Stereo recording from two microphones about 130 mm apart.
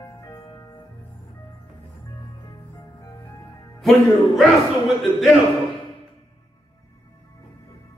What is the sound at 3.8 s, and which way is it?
Speech, centre (ahead or behind).